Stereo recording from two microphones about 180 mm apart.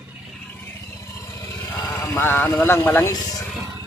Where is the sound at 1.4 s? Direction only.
15° left (ahead or behind).